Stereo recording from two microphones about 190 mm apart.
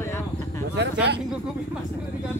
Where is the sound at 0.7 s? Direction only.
65° right (ahead or behind).